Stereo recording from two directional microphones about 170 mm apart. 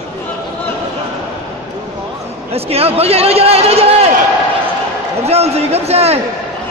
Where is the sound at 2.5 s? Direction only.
35° right (ahead or behind).